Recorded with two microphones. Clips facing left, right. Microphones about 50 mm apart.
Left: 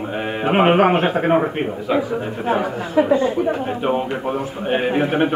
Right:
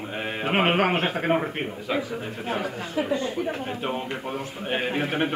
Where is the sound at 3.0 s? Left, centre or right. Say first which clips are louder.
Left 10 dB; left.